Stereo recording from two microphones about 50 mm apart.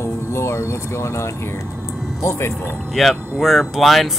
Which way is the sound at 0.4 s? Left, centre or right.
Left.